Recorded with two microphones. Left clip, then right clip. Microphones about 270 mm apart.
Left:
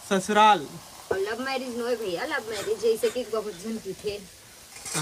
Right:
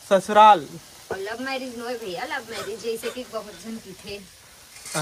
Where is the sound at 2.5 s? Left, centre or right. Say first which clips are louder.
Left 4 dB; centre.